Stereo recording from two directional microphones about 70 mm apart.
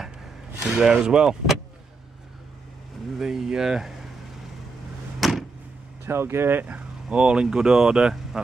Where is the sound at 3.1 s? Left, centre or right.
Centre.